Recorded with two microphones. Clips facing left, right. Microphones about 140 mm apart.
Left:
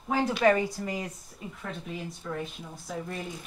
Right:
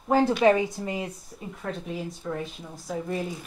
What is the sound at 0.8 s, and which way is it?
Speech, 25° right (ahead or behind).